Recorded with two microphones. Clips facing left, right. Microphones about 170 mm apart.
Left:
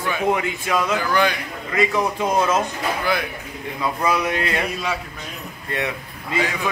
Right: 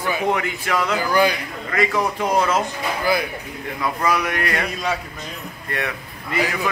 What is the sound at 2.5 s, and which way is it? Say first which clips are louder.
Speech: even; 5° right (ahead or behind).